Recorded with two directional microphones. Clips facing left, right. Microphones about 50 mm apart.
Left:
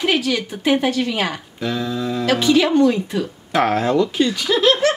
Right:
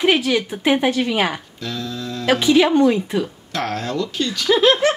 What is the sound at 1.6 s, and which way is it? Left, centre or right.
Speech, centre.